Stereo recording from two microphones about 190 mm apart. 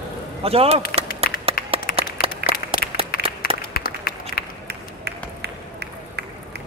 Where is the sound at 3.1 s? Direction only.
50° left (ahead or behind).